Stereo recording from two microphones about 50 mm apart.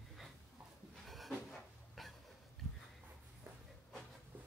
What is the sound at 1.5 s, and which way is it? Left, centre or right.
Cupboard open or close, centre.